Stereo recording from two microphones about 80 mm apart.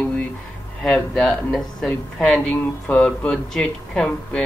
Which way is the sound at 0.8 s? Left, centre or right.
Centre.